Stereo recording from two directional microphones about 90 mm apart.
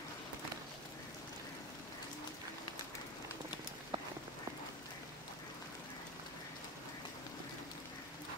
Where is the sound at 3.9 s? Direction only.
65° right (ahead or behind).